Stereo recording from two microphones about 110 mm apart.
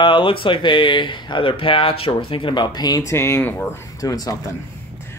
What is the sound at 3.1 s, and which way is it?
Speech, 25° left (ahead or behind).